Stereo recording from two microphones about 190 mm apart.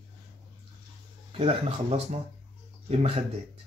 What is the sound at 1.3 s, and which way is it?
Speech, 35° right (ahead or behind).